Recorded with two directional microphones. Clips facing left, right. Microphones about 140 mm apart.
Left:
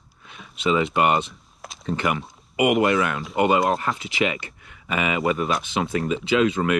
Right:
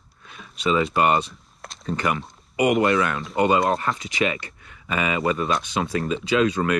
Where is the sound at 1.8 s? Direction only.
25° left (ahead or behind).